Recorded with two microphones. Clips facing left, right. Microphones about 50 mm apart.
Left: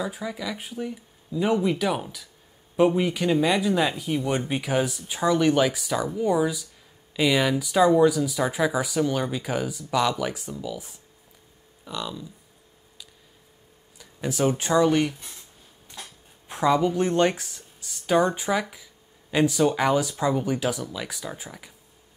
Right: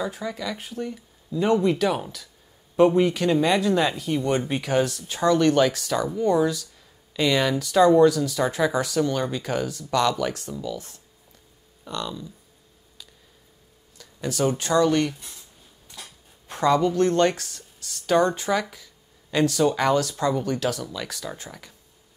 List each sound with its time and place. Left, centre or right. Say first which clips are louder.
0.0 s speech: right 1 dB; centre
13.9 s speech: even; centre
16.4 s speech: right 1 dB; centre